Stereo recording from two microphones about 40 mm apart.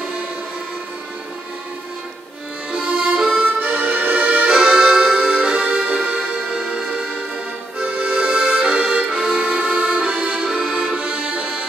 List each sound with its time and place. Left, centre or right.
2.7 s music: right
3.5 s accordion: right
4.5 s accordion: centre
6.0 s music: right
8.0 s music: right
10.3 s accordion: centre